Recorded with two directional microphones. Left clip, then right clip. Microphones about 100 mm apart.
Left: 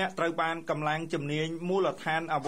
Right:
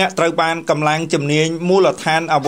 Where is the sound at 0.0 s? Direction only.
25° right (ahead or behind).